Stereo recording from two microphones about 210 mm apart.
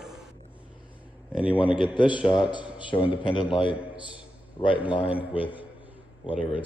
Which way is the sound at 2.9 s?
25° left (ahead or behind).